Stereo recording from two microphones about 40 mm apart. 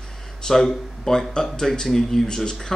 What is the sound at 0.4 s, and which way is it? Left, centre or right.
Speech, centre.